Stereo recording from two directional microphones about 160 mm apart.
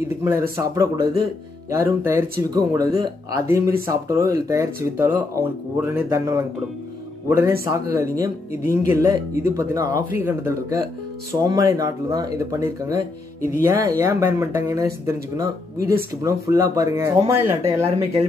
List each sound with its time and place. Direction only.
0.1 s speech: 15° right (ahead or behind)